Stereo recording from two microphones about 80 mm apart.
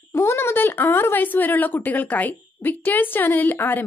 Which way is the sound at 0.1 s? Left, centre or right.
Left.